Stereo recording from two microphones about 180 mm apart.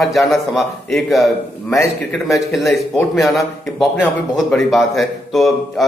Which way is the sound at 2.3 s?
Centre (ahead or behind).